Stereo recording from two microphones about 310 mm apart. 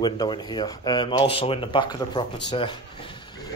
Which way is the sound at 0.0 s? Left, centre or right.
Centre.